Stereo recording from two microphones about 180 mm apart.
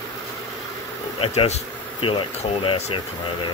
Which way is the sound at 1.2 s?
35° left (ahead or behind).